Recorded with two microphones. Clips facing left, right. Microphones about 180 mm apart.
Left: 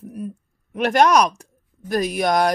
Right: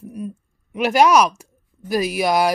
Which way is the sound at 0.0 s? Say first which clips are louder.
Right 1 dB; centre (ahead or behind).